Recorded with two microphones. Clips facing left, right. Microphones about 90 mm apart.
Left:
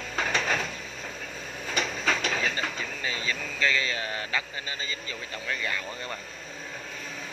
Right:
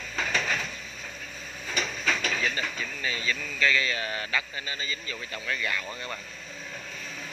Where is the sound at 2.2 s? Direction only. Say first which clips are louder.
Left 1 dB; 30° left (ahead or behind).